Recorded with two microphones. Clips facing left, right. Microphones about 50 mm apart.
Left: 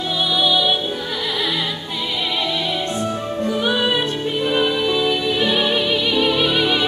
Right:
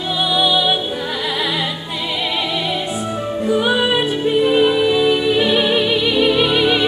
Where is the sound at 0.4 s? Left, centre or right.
Centre.